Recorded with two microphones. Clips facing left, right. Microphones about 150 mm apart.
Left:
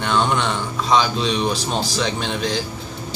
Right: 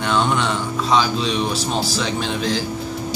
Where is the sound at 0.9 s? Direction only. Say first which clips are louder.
Left 1 dB; 5° right (ahead or behind).